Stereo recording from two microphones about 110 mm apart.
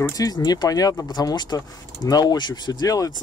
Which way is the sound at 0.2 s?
35° left (ahead or behind).